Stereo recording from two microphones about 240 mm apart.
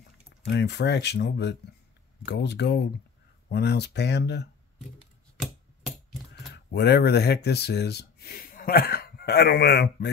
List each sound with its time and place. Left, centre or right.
0.5 s speech: left
6.3 s speech: left